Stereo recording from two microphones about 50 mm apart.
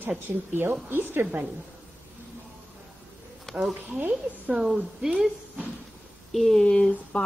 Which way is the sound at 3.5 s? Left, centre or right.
Centre.